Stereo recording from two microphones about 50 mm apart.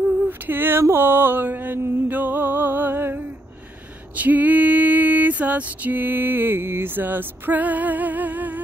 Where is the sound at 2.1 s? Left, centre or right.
Right.